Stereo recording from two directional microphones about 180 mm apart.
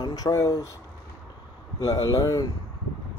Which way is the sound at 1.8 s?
20° left (ahead or behind).